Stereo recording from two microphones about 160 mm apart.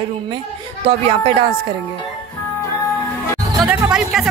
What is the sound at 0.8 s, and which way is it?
Speech, 35° right (ahead or behind).